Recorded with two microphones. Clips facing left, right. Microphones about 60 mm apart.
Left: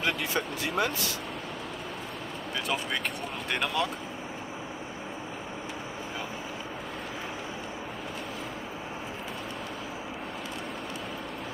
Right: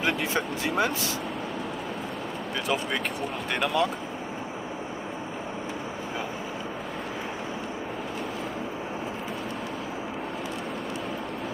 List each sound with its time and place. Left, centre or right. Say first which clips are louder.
0.3 s speech: right 3 dB; right
3.5 s speech: right 4 dB; centre